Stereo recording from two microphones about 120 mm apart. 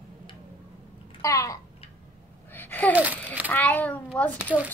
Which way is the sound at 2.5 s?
15° left (ahead or behind).